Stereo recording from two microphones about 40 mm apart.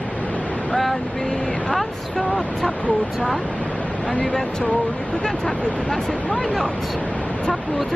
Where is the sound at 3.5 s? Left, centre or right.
Left.